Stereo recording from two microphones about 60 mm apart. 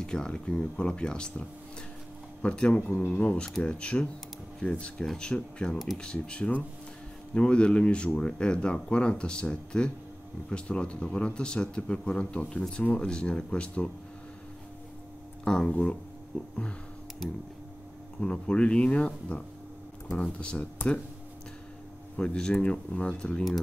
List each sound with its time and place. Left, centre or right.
0.0 s speech: centre
2.4 s speech: centre
15.4 s speech: centre
18.2 s speech: centre
22.1 s speech: centre